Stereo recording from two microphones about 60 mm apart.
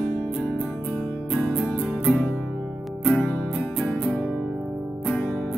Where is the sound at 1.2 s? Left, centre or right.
Centre.